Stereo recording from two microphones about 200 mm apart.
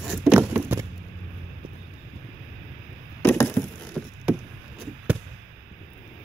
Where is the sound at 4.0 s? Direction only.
5° left (ahead or behind).